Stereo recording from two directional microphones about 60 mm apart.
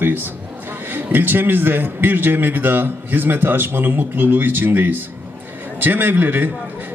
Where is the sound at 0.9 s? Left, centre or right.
Right.